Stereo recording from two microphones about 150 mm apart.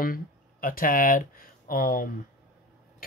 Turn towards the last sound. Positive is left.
turn(degrees=70)  # may be behind; listen again after turning